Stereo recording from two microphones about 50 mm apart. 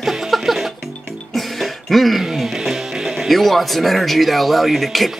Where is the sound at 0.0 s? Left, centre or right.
Centre.